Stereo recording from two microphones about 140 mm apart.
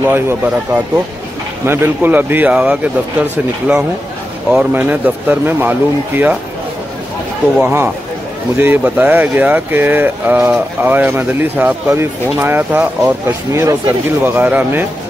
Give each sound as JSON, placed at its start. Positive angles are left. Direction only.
{"t": 0.0, "sound": "speech", "side_deg": -15}
{"t": 7.6, "sound": "speech", "side_deg": -15}